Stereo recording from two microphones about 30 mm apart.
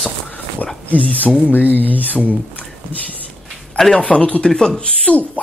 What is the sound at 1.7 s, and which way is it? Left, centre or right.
Speech, left.